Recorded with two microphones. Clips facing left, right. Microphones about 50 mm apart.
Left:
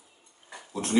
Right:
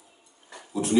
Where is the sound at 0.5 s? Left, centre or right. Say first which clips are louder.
Even; centre.